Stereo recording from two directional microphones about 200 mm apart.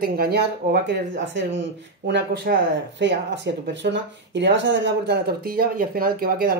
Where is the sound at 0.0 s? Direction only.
50° right (ahead or behind).